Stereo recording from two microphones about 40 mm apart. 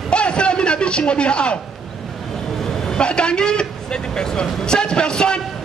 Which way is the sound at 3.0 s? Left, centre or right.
Left.